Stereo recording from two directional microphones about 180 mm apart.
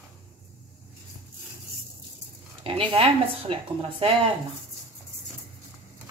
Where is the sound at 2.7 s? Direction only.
30° right (ahead or behind).